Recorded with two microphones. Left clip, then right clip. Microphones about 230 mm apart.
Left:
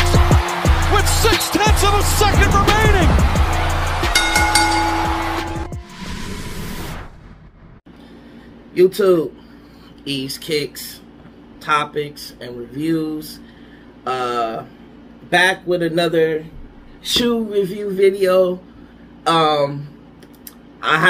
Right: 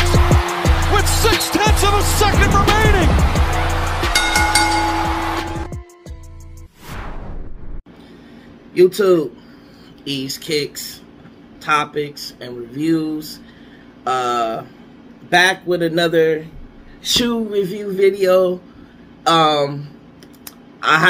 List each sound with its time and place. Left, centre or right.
0.0 s music: centre
8.7 s speech: centre
20.8 s speech: centre